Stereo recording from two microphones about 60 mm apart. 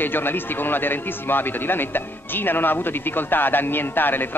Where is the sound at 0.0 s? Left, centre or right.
Left.